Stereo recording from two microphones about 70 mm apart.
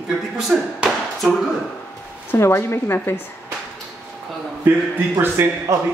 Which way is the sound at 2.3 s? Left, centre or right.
Left.